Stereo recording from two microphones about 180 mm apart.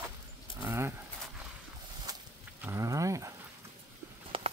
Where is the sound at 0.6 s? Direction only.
10° right (ahead or behind).